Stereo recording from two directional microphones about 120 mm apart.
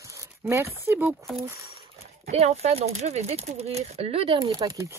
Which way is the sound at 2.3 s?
60° right (ahead or behind).